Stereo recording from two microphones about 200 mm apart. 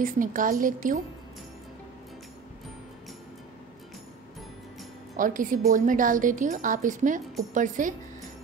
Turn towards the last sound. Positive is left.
turn(degrees=-40)  # may be behind; listen again after turning